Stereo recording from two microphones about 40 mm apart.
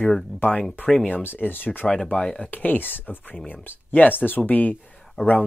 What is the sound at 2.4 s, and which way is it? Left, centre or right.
Speech, left.